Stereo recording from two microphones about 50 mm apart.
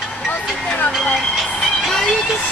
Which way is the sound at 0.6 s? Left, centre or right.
Left.